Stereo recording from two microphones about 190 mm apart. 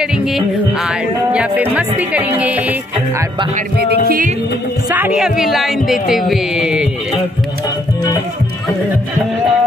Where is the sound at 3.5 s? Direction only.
55° right (ahead or behind).